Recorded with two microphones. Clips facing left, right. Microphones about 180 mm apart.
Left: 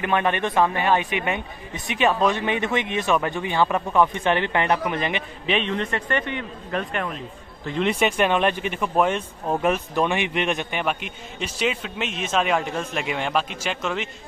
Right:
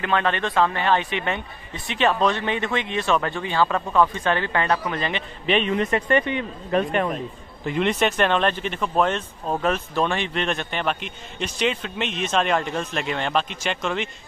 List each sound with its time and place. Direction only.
0.0 s speech: 15° left (ahead or behind)
5.5 s a man's voice: 5° right (ahead or behind); by 7.1 s 25° right (ahead or behind)
7.8 s speech: 10° left (ahead or behind)